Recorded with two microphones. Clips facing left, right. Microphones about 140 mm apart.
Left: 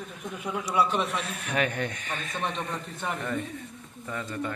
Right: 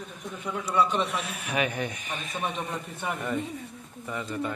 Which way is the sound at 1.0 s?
Centre (ahead or behind).